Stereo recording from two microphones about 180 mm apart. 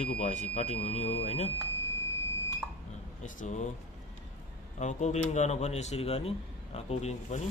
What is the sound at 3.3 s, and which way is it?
Speech, 40° left (ahead or behind).